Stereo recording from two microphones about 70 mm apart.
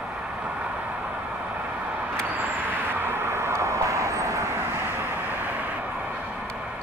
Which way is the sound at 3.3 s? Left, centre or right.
Right.